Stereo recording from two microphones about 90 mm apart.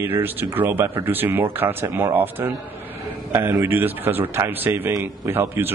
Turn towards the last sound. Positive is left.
turn(degrees=-25)  # may be behind; listen again after turning